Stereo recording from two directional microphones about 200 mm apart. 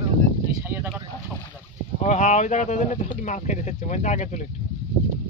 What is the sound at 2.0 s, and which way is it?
Speech, 35° left (ahead or behind).